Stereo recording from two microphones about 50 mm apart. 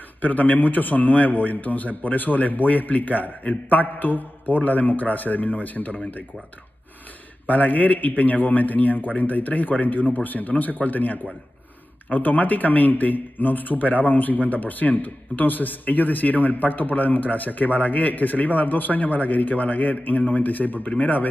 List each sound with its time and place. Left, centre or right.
0.2 s speech: left
7.4 s speech: left